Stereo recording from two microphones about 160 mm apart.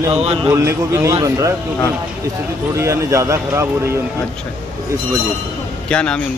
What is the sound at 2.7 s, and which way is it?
A man's voice, 20° right (ahead or behind).